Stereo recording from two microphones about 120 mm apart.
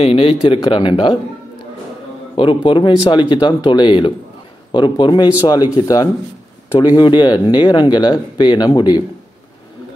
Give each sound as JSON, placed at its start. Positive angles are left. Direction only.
{"t": 0.0, "sound": "speech", "side_deg": 55}
{"t": 2.3, "sound": "speech", "side_deg": 45}